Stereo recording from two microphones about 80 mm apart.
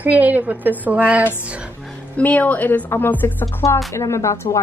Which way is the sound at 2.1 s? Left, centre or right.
Centre.